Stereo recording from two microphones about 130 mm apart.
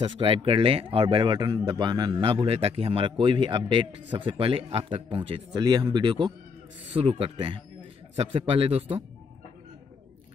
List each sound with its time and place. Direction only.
0.0 s a man's voice: 40° right (ahead or behind)
5.5 s a man's voice: 30° right (ahead or behind); by 9.0 s 50° right (ahead or behind)